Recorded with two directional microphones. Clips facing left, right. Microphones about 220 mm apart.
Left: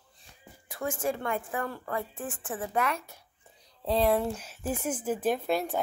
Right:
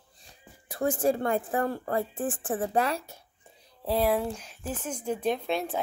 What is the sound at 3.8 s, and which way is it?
Speech, 5° right (ahead or behind).